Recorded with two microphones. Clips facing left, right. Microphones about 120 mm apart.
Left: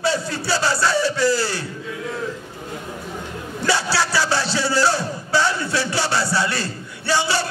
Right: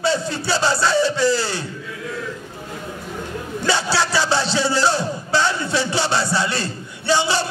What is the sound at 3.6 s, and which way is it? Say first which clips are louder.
Music: even; 20° right (ahead or behind).